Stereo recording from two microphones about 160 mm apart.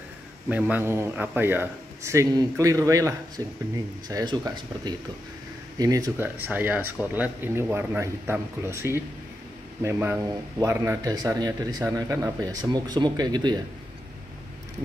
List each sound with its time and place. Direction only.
0.5 s a man's voice: 10° right (ahead or behind); by 13.6 s 25° right (ahead or behind)